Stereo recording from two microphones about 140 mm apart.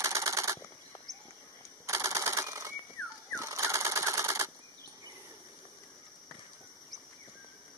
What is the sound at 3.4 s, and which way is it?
Sewing machine, 20° right (ahead or behind).